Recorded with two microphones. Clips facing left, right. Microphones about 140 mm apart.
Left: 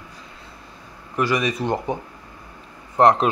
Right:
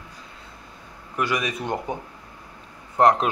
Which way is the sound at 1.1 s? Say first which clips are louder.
Left 4 dB; 5° right (ahead or behind).